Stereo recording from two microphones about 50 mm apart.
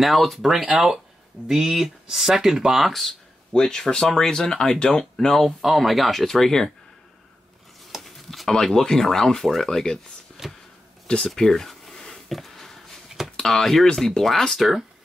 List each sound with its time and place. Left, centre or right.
0.0 s speech: centre
2.9 s speech: centre
8.0 s speech: centre
10.4 s a sound: centre
11.1 s a sound: centre
13.4 s speech: centre
14.6 s speech: centre